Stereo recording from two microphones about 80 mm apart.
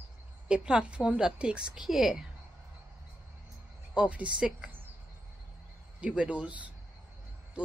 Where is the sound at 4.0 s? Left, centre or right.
Centre.